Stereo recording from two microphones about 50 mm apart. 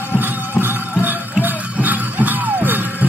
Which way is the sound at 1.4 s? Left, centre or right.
Right.